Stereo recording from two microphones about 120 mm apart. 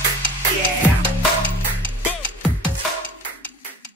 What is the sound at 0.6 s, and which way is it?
Music, 10° left (ahead or behind).